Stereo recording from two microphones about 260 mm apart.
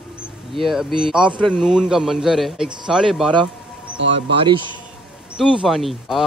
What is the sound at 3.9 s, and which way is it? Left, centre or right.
Speech, right.